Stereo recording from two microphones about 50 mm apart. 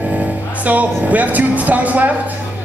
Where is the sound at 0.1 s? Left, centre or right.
Right.